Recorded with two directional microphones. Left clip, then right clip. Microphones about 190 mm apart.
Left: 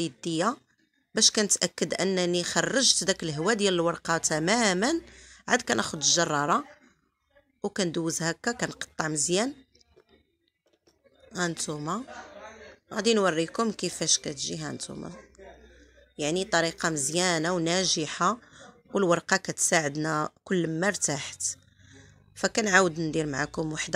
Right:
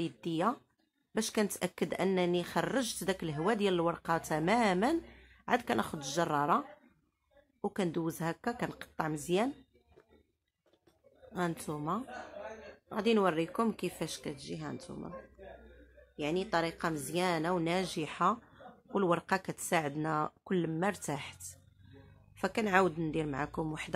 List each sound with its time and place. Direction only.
0.0 s speech: 15° left (ahead or behind)
7.6 s speech: 15° left (ahead or behind)
11.3 s speech: 10° left (ahead or behind); by 15.0 s 30° left (ahead or behind)
16.2 s a woman's voice: 25° left (ahead or behind)